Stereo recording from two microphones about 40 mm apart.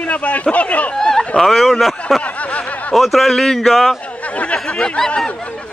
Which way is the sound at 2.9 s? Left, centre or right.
Centre.